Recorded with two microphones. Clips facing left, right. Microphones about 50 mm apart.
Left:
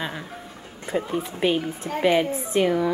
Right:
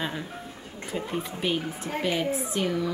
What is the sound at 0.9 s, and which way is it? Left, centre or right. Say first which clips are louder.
A woman's voice: left 5 dB; left.